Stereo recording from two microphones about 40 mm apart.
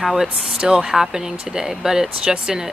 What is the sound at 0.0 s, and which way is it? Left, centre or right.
Speech, centre.